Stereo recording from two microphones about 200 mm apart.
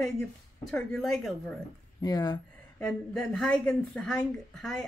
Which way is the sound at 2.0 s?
20° left (ahead or behind).